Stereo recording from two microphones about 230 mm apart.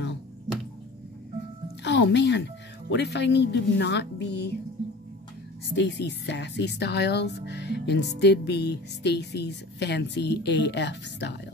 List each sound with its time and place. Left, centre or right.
1.8 s speech: left
5.8 s speech: left